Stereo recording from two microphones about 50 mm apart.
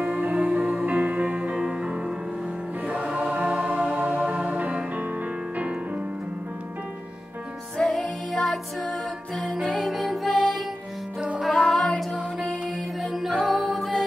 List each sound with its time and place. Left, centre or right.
0.0 s music: right
7.7 s music: centre
11.1 s music: right
11.4 s music: centre